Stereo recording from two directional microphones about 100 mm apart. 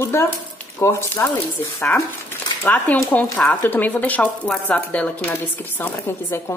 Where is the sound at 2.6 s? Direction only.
15° left (ahead or behind).